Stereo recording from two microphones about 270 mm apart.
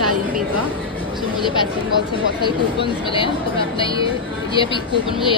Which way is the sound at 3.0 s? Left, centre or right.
Centre.